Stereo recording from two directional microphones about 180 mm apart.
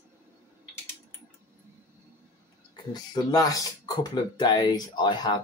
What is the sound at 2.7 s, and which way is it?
Speech, 20° left (ahead or behind).